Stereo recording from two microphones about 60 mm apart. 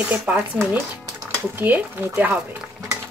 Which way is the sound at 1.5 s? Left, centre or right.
Right.